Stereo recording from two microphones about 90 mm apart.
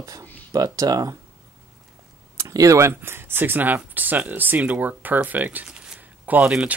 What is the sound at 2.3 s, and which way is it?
Speech, 35° right (ahead or behind).